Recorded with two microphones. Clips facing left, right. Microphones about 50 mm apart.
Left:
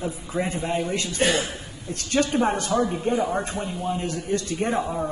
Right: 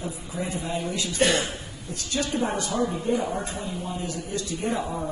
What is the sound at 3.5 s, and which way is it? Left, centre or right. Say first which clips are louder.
A woman's voice: left 4 dB; left.